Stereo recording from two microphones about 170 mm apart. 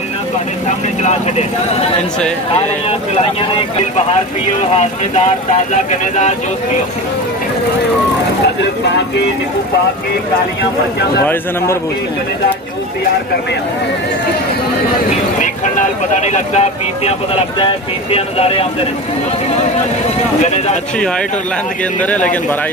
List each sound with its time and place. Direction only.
5.9 s speech: 45° left (ahead or behind)
15.4 s speech: 45° left (ahead or behind)
18.1 s speech: 35° left (ahead or behind)
20.4 s speech: 40° left (ahead or behind)
22.0 s speech: 10° left (ahead or behind)